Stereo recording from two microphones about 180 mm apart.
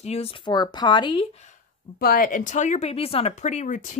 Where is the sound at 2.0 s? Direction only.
55° left (ahead or behind).